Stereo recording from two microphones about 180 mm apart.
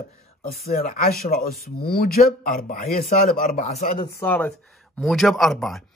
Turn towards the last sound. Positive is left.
turn(degrees=0)  # may be behind; listen again after turning